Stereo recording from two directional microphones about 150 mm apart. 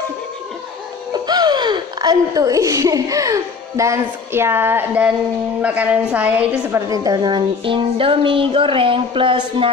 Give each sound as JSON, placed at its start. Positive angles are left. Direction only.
{"t": 1.1, "sound": "a woman's voice", "side_deg": -25}
{"t": 6.9, "sound": "music", "side_deg": -25}